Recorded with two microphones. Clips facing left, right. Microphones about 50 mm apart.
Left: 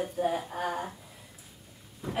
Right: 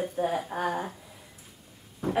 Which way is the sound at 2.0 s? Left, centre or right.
Right.